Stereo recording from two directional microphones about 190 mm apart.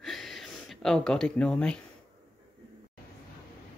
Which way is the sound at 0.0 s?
Centre (ahead or behind).